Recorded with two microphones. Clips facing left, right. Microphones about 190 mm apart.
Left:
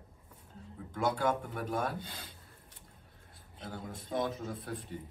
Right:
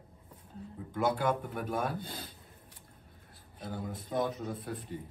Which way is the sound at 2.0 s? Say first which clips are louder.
Right 5 dB; 25° right (ahead or behind).